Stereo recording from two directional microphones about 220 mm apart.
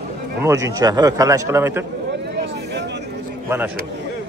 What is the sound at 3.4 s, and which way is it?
Speech, 10° right (ahead or behind).